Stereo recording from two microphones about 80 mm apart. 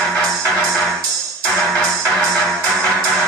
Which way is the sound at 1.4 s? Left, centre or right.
Centre.